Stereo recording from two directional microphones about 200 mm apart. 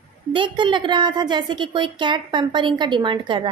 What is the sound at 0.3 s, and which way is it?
A woman's voice, 25° right (ahead or behind).